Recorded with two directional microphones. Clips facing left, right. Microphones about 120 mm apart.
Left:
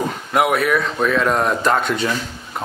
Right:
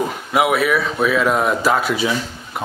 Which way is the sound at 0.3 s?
Centre (ahead or behind).